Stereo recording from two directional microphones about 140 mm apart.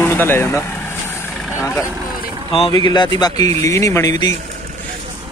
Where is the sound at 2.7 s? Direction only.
30° left (ahead or behind).